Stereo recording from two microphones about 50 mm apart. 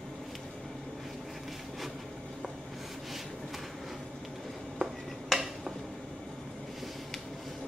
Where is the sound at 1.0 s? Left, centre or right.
Centre.